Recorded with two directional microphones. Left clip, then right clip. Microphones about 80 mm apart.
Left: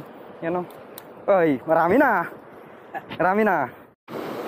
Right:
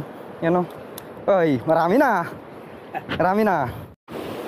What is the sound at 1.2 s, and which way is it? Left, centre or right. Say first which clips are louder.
Speech: right 1 dB; right.